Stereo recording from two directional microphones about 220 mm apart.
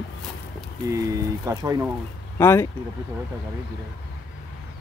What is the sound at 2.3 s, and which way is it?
Speech, 10° left (ahead or behind).